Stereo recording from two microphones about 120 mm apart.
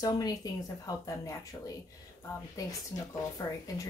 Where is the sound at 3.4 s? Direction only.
30° left (ahead or behind).